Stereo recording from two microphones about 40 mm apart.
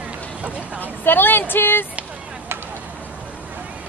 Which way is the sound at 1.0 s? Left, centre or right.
Left.